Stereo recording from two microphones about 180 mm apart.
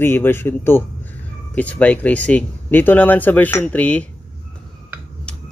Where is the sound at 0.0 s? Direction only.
10° left (ahead or behind).